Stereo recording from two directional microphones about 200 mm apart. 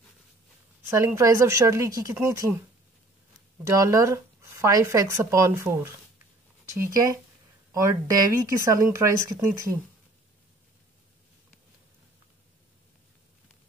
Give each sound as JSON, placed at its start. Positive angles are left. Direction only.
{"t": 0.8, "sound": "speech", "side_deg": -15}
{"t": 3.6, "sound": "speech", "side_deg": -15}